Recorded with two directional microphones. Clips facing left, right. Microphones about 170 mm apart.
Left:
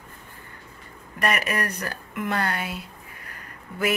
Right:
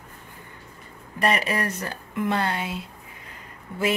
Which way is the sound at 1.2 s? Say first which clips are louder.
Right 2 dB; 30° right (ahead or behind).